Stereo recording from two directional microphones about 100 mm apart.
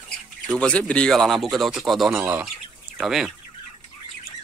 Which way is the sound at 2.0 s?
25° right (ahead or behind).